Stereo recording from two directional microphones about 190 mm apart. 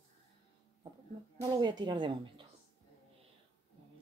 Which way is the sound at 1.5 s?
20° right (ahead or behind).